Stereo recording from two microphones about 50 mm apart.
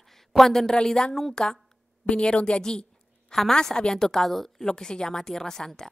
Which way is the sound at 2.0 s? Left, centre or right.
Left.